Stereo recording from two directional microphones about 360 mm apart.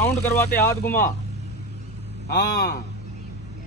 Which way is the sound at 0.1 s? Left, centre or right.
Centre.